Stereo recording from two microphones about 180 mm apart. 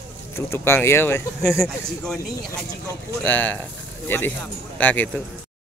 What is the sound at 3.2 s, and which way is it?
A man's voice, 10° left (ahead or behind).